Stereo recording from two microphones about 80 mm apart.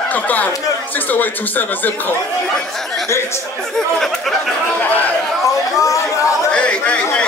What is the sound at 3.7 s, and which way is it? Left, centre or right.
Speech, centre.